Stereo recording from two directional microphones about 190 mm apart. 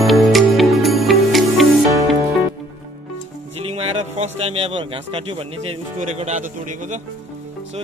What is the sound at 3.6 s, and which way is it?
Music, 30° right (ahead or behind).